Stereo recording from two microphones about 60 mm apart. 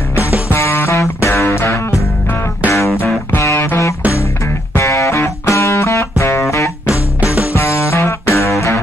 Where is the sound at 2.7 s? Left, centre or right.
Left.